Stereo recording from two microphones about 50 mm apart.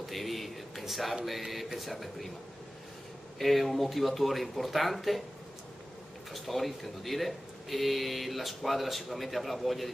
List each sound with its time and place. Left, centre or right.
0.1 s a sound: centre
1.2 s speech: centre
3.3 s speech: centre
6.3 s speech: centre